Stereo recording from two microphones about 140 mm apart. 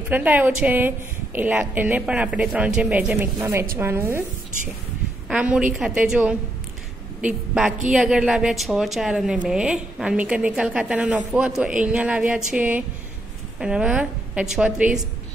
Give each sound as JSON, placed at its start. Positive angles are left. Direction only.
{"t": 0.1, "sound": "a woman's voice", "side_deg": -10}
{"t": 3.3, "sound": "a woman's voice", "side_deg": -20}
{"t": 5.3, "sound": "a woman's voice", "side_deg": -10}